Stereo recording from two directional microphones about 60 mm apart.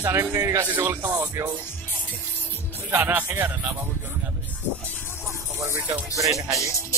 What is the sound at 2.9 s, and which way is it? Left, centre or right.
Speech, right.